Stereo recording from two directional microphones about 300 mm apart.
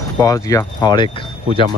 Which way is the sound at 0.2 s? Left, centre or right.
Centre.